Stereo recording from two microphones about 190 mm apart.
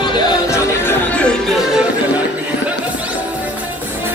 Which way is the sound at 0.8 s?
5° left (ahead or behind).